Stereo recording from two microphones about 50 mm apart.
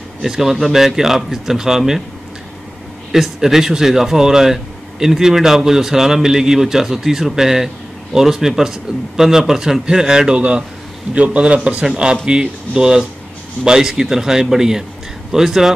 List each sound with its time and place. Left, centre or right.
0.2 s speech: centre
3.1 s a man's voice: centre